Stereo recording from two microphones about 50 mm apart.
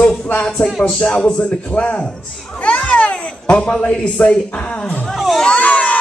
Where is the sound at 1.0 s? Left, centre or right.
Centre.